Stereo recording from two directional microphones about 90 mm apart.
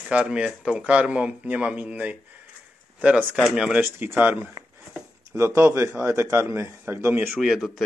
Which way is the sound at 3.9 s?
20° right (ahead or behind).